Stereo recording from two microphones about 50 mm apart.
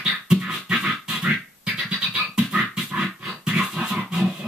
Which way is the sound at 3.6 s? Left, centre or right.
Centre.